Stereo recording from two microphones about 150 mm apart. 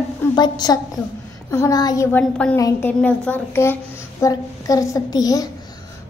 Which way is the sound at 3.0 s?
10° left (ahead or behind).